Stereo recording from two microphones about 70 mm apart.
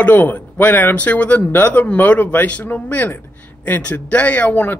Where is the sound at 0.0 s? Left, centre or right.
Left.